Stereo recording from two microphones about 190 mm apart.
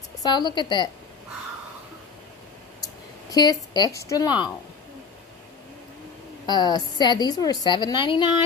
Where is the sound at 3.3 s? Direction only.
20° left (ahead or behind).